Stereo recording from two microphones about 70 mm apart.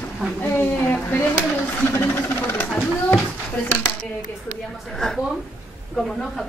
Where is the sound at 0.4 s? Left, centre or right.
Left.